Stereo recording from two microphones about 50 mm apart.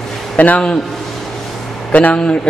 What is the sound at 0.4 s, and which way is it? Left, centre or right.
Speech, left.